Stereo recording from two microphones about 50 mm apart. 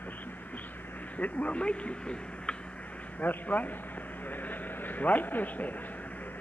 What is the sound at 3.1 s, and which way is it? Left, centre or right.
Speech, left.